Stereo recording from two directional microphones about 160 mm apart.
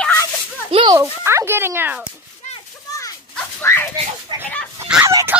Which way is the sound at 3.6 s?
15° left (ahead or behind).